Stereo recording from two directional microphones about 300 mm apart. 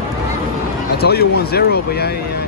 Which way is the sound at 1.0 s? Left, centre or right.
Left.